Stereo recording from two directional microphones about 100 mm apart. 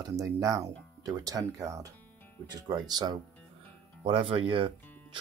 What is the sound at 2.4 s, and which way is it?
Speech, 45° right (ahead or behind).